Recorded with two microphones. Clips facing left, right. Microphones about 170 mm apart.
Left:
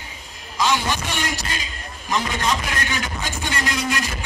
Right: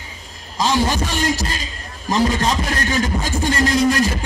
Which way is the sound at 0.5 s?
35° right (ahead or behind).